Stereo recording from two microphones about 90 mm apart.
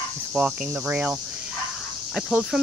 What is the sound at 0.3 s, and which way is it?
Speech, 15° right (ahead or behind).